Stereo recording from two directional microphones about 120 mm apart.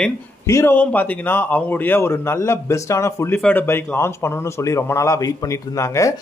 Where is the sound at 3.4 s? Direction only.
15° left (ahead or behind).